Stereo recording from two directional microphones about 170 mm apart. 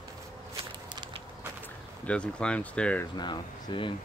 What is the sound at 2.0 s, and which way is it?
Speech, 5° left (ahead or behind).